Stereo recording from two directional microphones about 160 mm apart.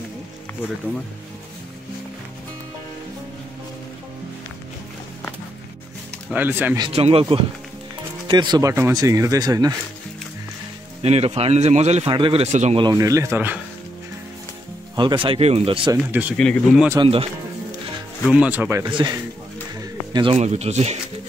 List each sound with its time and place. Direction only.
6.3 s speech: 10° right (ahead or behind)
6.8 s a man's voice: 35° right (ahead or behind)
11.0 s a man's voice: 40° right (ahead or behind)
12.1 s a man's voice: 35° right (ahead or behind)
12.7 s speech: 25° right (ahead or behind)
15.0 s a man's voice: 30° right (ahead or behind)
16.1 s speech: 10° right (ahead or behind)
16.3 s speech: 5° left (ahead or behind)
17.0 s a man's voice: 35° right (ahead or behind)
18.3 s speech: 10° right (ahead or behind)
18.9 s a man's voice: 30° right (ahead or behind)
19.8 s a sound: 30° right (ahead or behind)
20.3 s speech: 45° right (ahead or behind)